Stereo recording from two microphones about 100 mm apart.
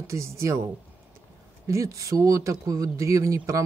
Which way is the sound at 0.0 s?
30° right (ahead or behind).